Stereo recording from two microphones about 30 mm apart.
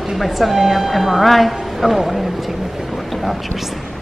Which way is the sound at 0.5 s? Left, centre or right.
Centre.